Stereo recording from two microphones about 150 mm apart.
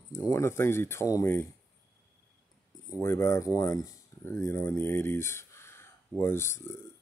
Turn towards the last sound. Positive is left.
turn(degrees=15)  # may be behind; listen again after turning